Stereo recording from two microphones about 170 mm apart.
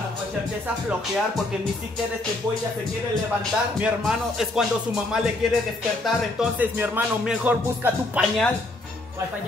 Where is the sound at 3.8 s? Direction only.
5° right (ahead or behind).